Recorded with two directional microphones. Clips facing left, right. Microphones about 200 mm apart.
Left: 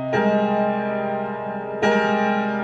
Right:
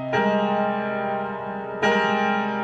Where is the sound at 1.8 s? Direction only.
40° left (ahead or behind).